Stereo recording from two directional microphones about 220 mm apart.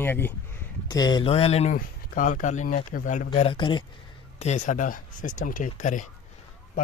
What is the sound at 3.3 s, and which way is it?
Speech, 25° left (ahead or behind).